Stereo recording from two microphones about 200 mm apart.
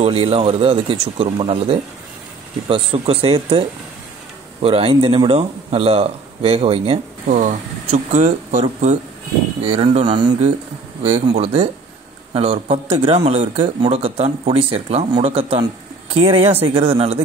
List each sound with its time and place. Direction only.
0.0 s speech: 30° right (ahead or behind)